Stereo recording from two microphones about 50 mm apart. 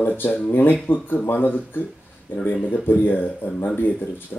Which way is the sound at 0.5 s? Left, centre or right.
Left.